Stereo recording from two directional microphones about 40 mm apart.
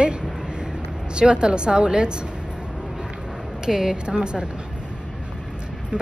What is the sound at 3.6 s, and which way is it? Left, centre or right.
Speech, centre.